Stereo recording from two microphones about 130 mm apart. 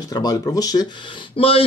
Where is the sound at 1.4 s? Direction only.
45° left (ahead or behind).